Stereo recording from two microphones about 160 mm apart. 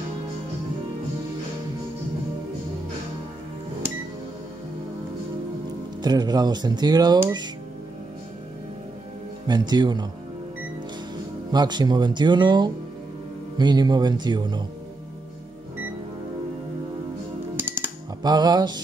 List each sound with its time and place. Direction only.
6.0 s speech: 25° right (ahead or behind)
9.5 s speech: 25° right (ahead or behind)
11.5 s speech: 25° right (ahead or behind)
17.6 s music: 15° right (ahead or behind)
18.2 s speech: 25° right (ahead or behind)